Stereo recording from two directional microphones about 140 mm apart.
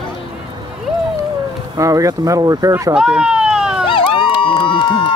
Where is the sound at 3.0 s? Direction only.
5° right (ahead or behind).